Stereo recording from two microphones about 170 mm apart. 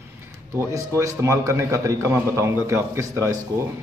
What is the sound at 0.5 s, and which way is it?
A man's voice, 15° right (ahead or behind).